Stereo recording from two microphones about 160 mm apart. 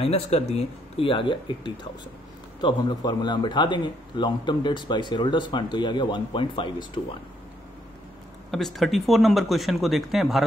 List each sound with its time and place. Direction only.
0.0 s a man's voice: 40° left (ahead or behind)
8.5 s speech: centre (ahead or behind)